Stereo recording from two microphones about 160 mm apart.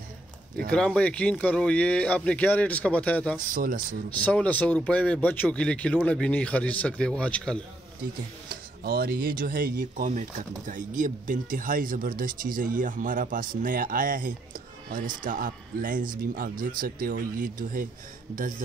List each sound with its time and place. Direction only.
0.7 s speech: 5° left (ahead or behind)
3.3 s speech: 60° right (ahead or behind)
4.2 s speech: 10° left (ahead or behind)
8.5 s speech: 70° right (ahead or behind)